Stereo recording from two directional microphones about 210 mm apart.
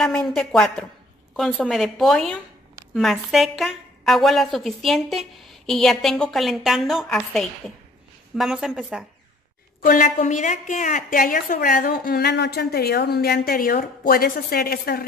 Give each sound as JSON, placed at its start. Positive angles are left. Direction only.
{"t": 0.0, "sound": "a woman's voice", "side_deg": 5}
{"t": 9.8, "sound": "a woman's voice", "side_deg": 40}